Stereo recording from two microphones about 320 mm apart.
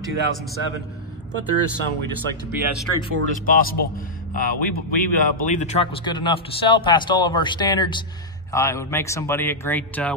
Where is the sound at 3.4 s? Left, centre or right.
Left.